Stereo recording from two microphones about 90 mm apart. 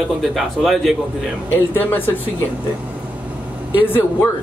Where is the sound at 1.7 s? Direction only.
20° left (ahead or behind).